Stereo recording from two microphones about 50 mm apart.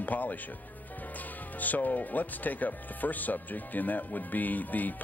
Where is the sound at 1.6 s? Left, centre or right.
Left.